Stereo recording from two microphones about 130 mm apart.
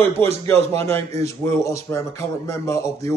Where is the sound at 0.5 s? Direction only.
20° left (ahead or behind).